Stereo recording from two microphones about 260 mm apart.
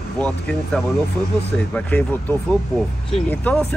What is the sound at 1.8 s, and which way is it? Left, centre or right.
Speech, centre.